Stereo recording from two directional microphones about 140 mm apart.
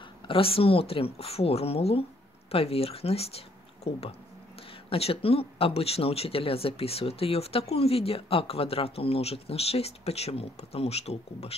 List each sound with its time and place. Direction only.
0.3 s speech: 40° left (ahead or behind)